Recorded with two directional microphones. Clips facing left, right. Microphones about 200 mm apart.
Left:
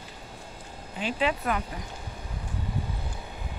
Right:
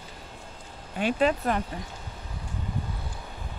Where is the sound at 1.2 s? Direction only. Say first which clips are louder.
Right 2 dB; 35° right (ahead or behind).